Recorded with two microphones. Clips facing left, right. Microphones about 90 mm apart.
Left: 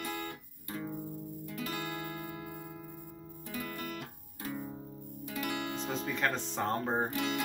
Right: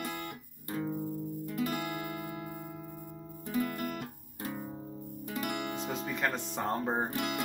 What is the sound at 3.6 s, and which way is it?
Music, 5° right (ahead or behind).